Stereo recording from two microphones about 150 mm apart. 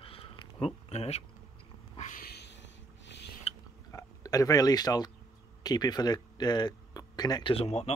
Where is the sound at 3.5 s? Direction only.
40° left (ahead or behind).